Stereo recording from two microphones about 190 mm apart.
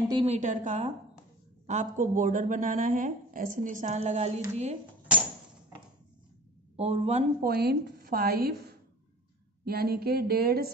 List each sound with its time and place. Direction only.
0.1 s a woman's voice: 30° right (ahead or behind)
6.8 s a woman's voice: 35° right (ahead or behind)
7.4 s a woman's voice: 60° right (ahead or behind)
9.7 s speech: 55° right (ahead or behind)